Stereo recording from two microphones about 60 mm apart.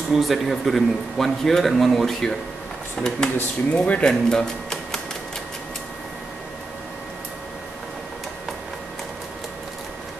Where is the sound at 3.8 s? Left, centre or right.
Left.